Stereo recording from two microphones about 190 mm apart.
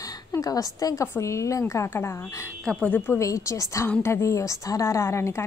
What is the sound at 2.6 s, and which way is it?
A woman's voice, 5° left (ahead or behind).